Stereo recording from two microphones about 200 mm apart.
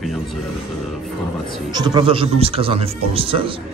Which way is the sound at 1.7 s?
20° right (ahead or behind).